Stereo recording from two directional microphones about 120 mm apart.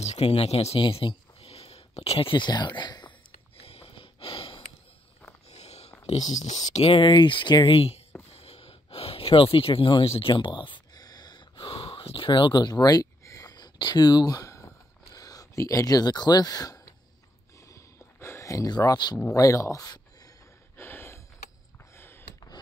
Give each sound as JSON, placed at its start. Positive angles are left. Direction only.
{"t": 0.0, "sound": "speech", "side_deg": 60}
{"t": 0.8, "sound": "speech", "side_deg": 50}
{"t": 3.5, "sound": "sniff", "side_deg": 60}
{"t": 5.5, "sound": "a sound", "side_deg": 65}
{"t": 6.9, "sound": "speech", "side_deg": 45}
{"t": 8.3, "sound": "gasp", "side_deg": 60}
{"t": 15.1, "sound": "speech", "side_deg": 30}
{"t": 17.6, "sound": "a sound", "side_deg": 25}
{"t": 19.1, "sound": "speech", "side_deg": 25}
{"t": 20.7, "sound": "a sound", "side_deg": 20}